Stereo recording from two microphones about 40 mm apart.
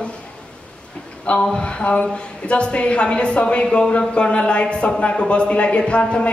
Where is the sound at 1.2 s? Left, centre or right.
Left.